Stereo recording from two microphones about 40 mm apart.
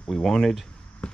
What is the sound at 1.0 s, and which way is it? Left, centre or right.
Basketball bounce, left.